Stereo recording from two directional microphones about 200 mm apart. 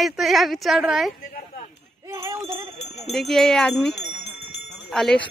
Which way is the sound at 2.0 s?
15° right (ahead or behind).